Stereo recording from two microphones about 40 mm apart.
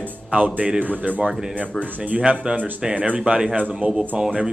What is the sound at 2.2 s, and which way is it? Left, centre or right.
Speech, right.